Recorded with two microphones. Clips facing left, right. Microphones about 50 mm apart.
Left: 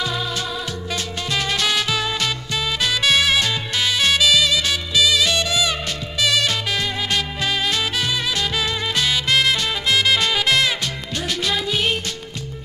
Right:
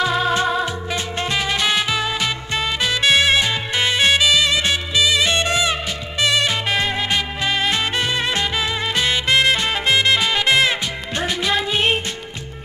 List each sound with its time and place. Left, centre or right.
0.0 s music: right
1.3 s music: centre
5.4 s music: right
6.2 s music: centre